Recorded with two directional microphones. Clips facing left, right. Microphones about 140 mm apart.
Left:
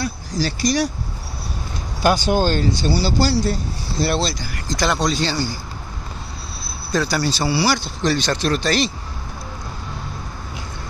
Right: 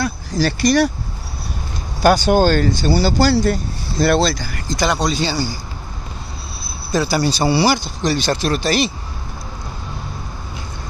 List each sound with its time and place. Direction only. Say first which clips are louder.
0.0 s speech: right 4 dB; 60° right (ahead or behind)
2.0 s speech: right 4 dB; 50° right (ahead or behind)
4.6 s speech: right 1 dB; 5° right (ahead or behind)
6.9 s speech: right 3 dB; 5° right (ahead or behind)
7.8 s speech: right 1 dB; centre (ahead or behind)